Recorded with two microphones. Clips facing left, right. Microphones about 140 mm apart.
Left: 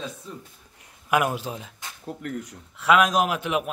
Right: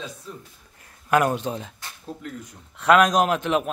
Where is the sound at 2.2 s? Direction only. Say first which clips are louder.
Left 4 dB; 60° left (ahead or behind).